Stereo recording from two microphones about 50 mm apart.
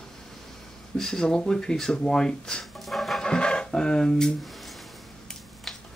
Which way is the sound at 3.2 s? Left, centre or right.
Centre.